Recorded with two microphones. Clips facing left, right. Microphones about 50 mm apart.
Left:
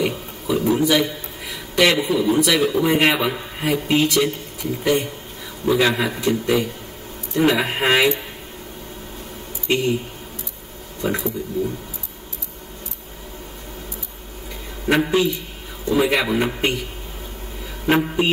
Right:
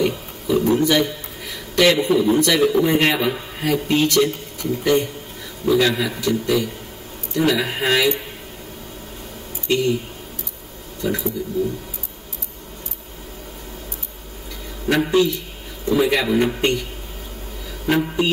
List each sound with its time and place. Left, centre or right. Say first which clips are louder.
0.0 s a sound: right 2 dB; centre
2.1 s a man's voice: right 1 dB; centre
5.7 s a man's voice: even; left
9.7 s speech: right 1 dB; left
11.0 s speech: even; left
14.9 s a man's voice: right 1 dB; centre
17.8 s a man's voice: left 1 dB; left